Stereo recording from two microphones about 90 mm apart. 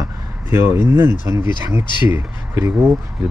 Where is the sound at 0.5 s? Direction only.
30° right (ahead or behind).